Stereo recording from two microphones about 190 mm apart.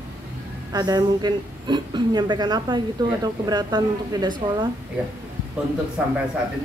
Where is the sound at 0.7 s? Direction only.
20° right (ahead or behind).